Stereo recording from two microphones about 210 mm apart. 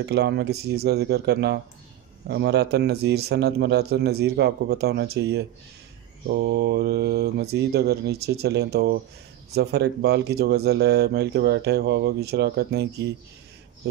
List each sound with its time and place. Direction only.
0.0 s speech: 50° right (ahead or behind)